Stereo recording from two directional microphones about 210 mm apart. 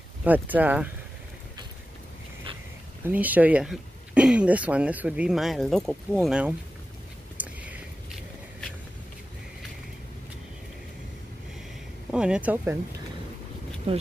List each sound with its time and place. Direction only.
0.2 s speech: 10° right (ahead or behind)
3.1 s speech: 10° right (ahead or behind)
7.3 s a sound: 5° right (ahead or behind)
12.1 s speech: 5° right (ahead or behind)
13.9 s speech: 25° right (ahead or behind)